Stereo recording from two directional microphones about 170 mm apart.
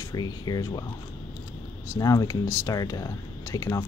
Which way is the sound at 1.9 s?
20° left (ahead or behind).